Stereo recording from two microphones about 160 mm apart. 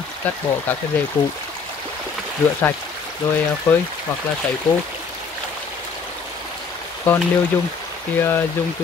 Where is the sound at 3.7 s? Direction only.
15° left (ahead or behind).